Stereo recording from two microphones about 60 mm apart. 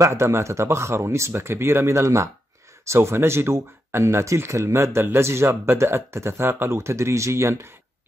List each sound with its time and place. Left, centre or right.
0.0 s speech: right